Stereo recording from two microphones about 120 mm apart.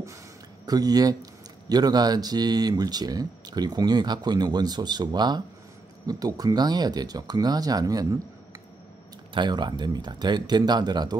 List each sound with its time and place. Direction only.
0.7 s speech: 30° right (ahead or behind)
9.3 s speech: 40° right (ahead or behind)